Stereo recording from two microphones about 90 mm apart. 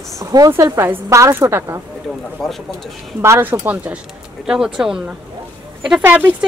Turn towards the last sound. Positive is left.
turn(degrees=-20)  # may be behind; listen again after turning